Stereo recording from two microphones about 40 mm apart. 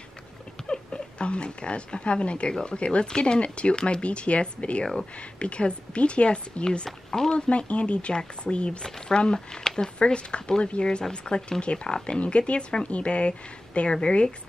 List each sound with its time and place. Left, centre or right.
0.7 s speech: left
7.3 s speech: left
9.9 s speech: left